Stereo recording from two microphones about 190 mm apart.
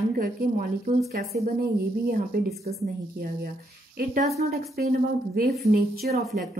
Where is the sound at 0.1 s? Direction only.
50° right (ahead or behind).